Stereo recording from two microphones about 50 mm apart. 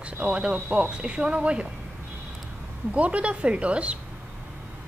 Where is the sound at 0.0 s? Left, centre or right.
Right.